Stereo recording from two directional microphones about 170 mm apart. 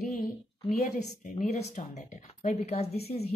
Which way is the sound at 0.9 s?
45° left (ahead or behind).